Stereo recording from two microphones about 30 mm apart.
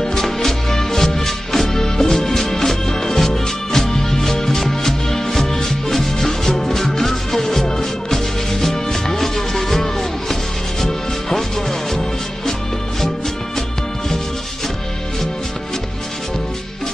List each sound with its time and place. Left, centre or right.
0.0 s music: centre